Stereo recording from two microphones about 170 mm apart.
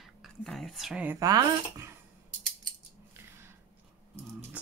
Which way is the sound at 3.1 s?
15° right (ahead or behind).